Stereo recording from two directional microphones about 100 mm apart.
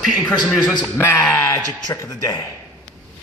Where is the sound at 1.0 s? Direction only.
25° left (ahead or behind).